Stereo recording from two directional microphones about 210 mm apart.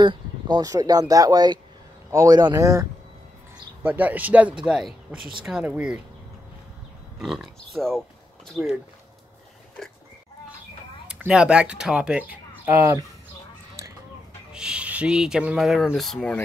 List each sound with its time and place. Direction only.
0.0 s speech: 20° right (ahead or behind); by 5.9 s 5° right (ahead or behind)
7.2 s speech: centre (ahead or behind)
9.8 s speech: 5° left (ahead or behind)
11.2 s speech: 5° right (ahead or behind)
14.5 s speech: 5° right (ahead or behind)